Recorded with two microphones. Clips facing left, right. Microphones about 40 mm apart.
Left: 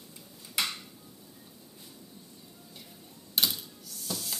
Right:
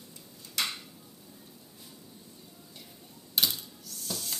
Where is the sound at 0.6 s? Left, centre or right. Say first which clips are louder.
Left 1 dB; centre.